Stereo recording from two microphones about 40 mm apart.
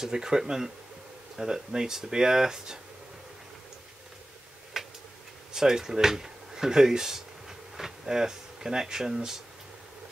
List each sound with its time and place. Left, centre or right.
0.0 s speech: centre
4.7 s tick-tock: centre
5.5 s speech: centre